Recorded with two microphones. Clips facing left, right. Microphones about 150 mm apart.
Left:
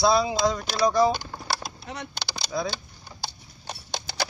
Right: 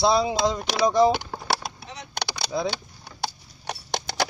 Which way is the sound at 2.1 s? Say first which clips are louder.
Right 5 dB; 65° right (ahead or behind).